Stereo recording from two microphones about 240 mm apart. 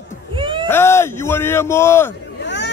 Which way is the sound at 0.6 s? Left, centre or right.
Centre.